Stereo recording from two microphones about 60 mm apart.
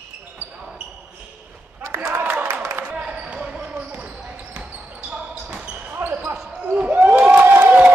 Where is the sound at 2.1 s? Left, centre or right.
Right.